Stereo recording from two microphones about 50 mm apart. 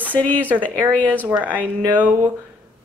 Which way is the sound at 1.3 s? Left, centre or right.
Right.